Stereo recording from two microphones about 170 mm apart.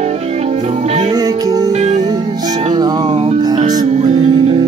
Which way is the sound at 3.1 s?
35° right (ahead or behind).